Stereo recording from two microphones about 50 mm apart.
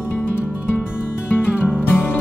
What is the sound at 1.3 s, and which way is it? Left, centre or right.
Music, left.